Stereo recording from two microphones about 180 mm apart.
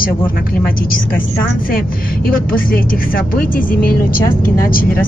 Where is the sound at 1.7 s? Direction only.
55° left (ahead or behind).